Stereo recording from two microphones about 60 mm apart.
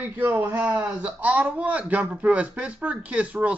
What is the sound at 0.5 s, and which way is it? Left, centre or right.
Speech, right.